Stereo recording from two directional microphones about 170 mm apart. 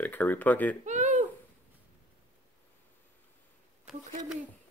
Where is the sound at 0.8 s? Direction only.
45° right (ahead or behind).